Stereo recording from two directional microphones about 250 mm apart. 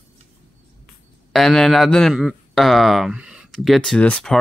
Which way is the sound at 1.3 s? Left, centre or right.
Centre.